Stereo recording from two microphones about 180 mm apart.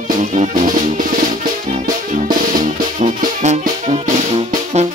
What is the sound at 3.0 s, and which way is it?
Music, 40° right (ahead or behind).